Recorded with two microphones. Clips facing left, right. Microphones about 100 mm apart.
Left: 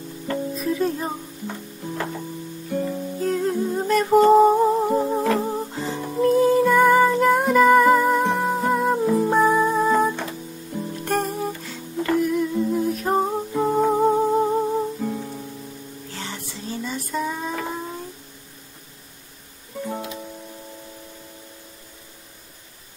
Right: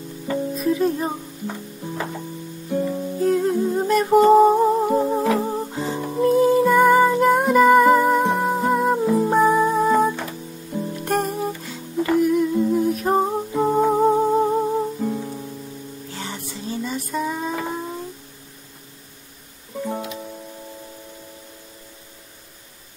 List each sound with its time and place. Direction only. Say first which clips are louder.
0.3 s music: right 3 dB; 10° right (ahead or behind)
11.3 s music: right 1 dB; 5° right (ahead or behind)
19.9 s music: right 2 dB; 20° right (ahead or behind)